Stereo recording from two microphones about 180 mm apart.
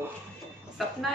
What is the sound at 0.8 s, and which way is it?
Speech, centre (ahead or behind).